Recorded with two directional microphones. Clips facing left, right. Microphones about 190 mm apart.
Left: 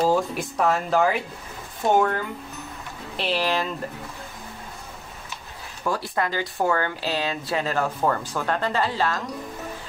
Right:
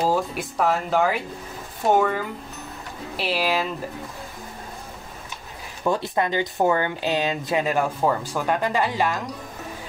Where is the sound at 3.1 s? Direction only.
5° right (ahead or behind).